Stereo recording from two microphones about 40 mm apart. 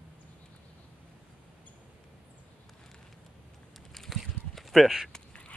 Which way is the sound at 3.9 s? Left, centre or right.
Centre.